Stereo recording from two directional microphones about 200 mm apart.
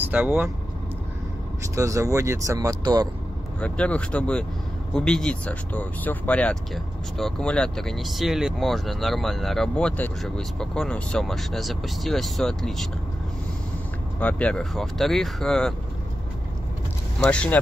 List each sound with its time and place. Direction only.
0.0 s speech: 10° right (ahead or behind)
1.8 s speech: 15° right (ahead or behind)
3.6 s speech: 5° left (ahead or behind)
14.2 s speech: 5° left (ahead or behind)
17.2 s speech: 5° left (ahead or behind)